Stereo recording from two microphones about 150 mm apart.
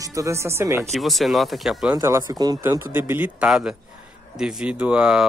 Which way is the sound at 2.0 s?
20° right (ahead or behind).